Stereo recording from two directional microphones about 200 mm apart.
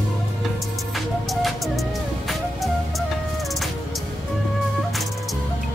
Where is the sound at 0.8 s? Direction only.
Centre (ahead or behind).